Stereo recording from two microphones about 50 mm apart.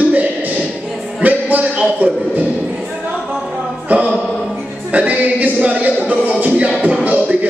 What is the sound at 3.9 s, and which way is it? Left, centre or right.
A man's voice, right.